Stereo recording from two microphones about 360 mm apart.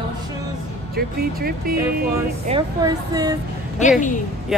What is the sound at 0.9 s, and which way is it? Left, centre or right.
Speech, right.